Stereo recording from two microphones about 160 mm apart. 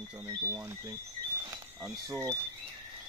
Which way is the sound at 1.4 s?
20° right (ahead or behind).